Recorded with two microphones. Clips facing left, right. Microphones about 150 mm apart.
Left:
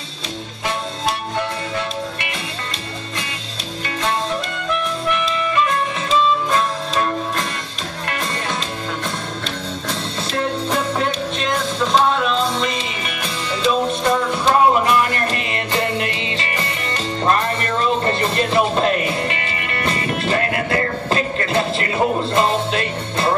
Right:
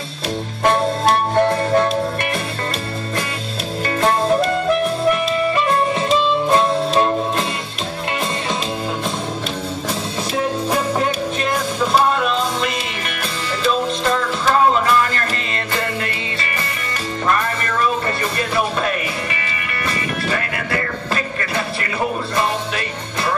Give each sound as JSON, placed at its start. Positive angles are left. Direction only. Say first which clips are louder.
{"t": 0.7, "sound": "music", "louder": "right 8 dB", "side_deg": -50}
{"t": 4.0, "sound": "music", "louder": "right 6 dB", "side_deg": -40}
{"t": 10.3, "sound": "music", "louder": "right 1 dB", "side_deg": -10}
{"t": 13.7, "sound": "music", "louder": "left 1 dB", "side_deg": 15}
{"t": 17.3, "sound": "music", "louder": "left 1 dB", "side_deg": 30}